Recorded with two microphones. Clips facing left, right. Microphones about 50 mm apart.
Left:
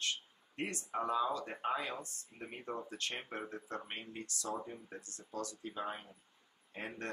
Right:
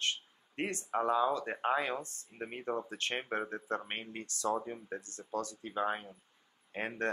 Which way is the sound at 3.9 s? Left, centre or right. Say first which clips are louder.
Right 3 dB; right.